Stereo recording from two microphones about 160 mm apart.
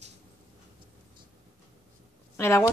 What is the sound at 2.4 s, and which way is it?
Speech, 15° left (ahead or behind).